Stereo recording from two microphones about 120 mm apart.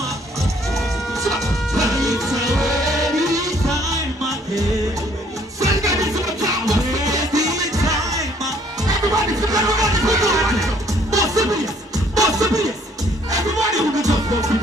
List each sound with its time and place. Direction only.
1.1 s music: centre (ahead or behind)
3.3 s music: 30° right (ahead or behind)